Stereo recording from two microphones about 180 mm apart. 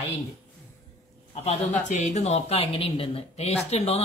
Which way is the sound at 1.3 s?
40° left (ahead or behind).